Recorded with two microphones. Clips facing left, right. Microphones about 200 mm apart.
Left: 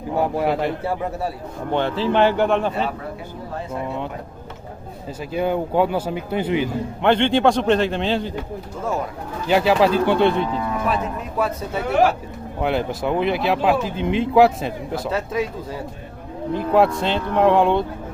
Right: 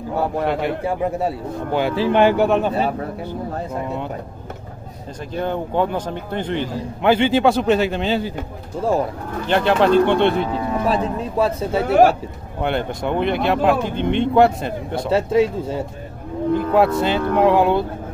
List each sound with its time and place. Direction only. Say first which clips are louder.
0.1 s a man's voice: left 1 dB; 15° left (ahead or behind)
0.5 s speech: right 1 dB; centre (ahead or behind)
5.3 s a man's voice: left 2 dB; 10° left (ahead or behind)
7.1 s speech: right 1 dB; 5° right (ahead or behind)
9.5 s speech: right 1 dB; 5° left (ahead or behind)
10.9 s speech: right 3 dB; 30° right (ahead or behind)
12.6 s speech: even; centre (ahead or behind)
15.0 s speech: right 8 dB; 30° right (ahead or behind)
16.5 s speech: even; centre (ahead or behind)